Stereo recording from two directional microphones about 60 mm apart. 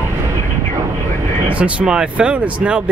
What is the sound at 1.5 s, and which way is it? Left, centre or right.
Speech, right.